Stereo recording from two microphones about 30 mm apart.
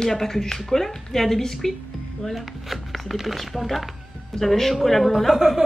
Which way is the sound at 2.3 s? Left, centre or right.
Centre.